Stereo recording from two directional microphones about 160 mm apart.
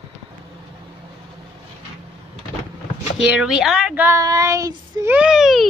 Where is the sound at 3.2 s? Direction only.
5° right (ahead or behind); by 5.1 s 20° right (ahead or behind).